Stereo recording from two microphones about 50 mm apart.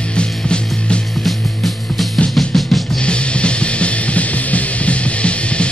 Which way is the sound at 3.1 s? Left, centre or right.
Left.